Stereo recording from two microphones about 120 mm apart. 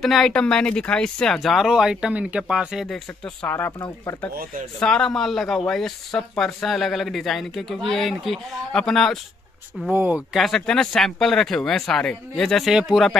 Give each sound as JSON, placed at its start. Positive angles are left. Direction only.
{"t": 0.0, "sound": "speech", "side_deg": 5}
{"t": 3.4, "sound": "speech", "side_deg": 20}
{"t": 4.7, "sound": "speech", "side_deg": 5}
{"t": 9.9, "sound": "speech", "side_deg": -15}
{"t": 10.3, "sound": "speech", "side_deg": 5}